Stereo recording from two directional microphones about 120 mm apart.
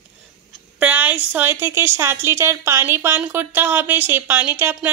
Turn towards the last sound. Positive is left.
turn(degrees=-20)  # may be behind; listen again after turning